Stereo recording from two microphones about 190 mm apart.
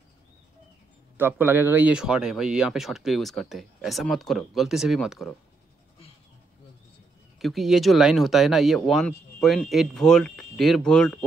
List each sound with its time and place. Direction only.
1.1 s speech: 10° right (ahead or behind)
7.3 s speech: centre (ahead or behind)